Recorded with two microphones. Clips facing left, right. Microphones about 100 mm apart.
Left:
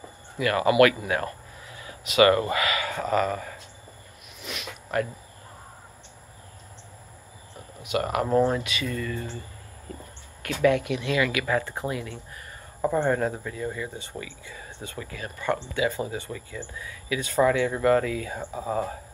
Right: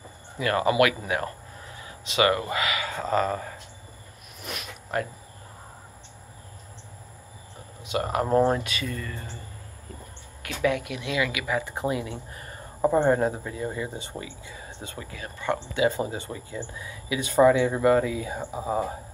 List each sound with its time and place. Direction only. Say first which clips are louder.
0.4 s speech: left 2 dB; 25° right (ahead or behind)
1.8 s a sound: left 4 dB; 25° right (ahead or behind)
2.5 s speech: left 2 dB; 20° right (ahead or behind)
4.4 s a sound: right 1 dB; 45° right (ahead or behind)
7.8 s speech: left 1 dB; 25° right (ahead or behind)
8.3 s speech: right 1 dB; 35° right (ahead or behind)
10.4 s speech: left 4 dB; 15° right (ahead or behind)